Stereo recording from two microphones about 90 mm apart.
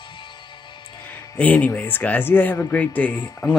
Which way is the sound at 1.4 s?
15° left (ahead or behind).